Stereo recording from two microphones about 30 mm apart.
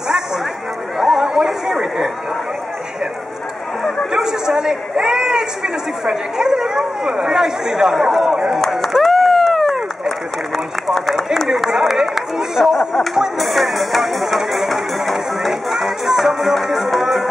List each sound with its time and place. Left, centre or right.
0.9 s chatter: centre
4.1 s a man's voice: centre
9.0 s run: centre
11.4 s a sound: centre
12.6 s speech: centre
13.4 s music: centre